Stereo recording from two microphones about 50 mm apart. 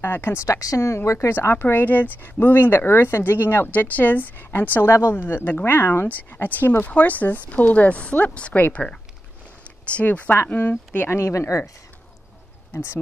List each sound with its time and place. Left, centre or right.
0.0 s a woman's voice: left
0.5 s speech: left
1.6 s speech: left
6.0 s speech: left
9.9 s speech: left
11.1 s speech: left